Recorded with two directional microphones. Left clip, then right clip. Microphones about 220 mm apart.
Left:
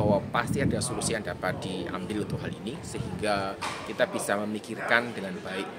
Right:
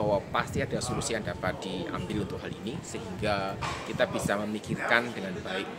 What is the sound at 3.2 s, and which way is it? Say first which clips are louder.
Speech: left 1 dB; 10° left (ahead or behind).